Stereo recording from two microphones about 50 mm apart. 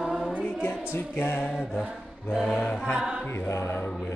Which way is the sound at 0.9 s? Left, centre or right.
Left.